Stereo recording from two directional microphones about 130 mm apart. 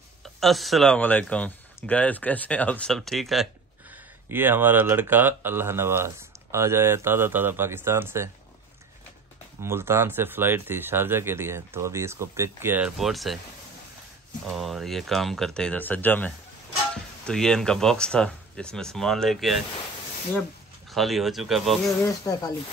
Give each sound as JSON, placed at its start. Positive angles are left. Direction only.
{"t": 0.2, "sound": "speech", "side_deg": 0}
{"t": 3.9, "sound": "speech", "side_deg": -15}
{"t": 9.6, "sound": "speech", "side_deg": -20}
{"t": 12.9, "sound": "speech", "side_deg": 0}
{"t": 14.5, "sound": "speech", "side_deg": 0}
{"t": 20.9, "sound": "speech", "side_deg": 0}
{"t": 22.0, "sound": "speech", "side_deg": 25}